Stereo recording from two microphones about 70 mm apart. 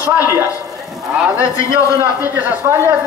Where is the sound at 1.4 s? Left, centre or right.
Left.